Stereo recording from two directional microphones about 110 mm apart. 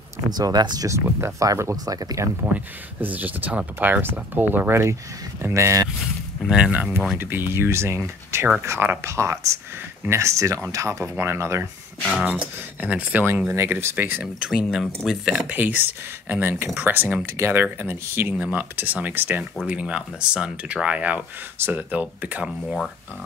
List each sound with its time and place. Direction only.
0.3 s speech: 40° right (ahead or behind)
2.5 s speech: 15° right (ahead or behind)
6.5 s speech: 10° right (ahead or behind); by 11.6 s 25° right (ahead or behind)
12.3 s speech: 10° right (ahead or behind)
14.2 s speech: 5° right (ahead or behind)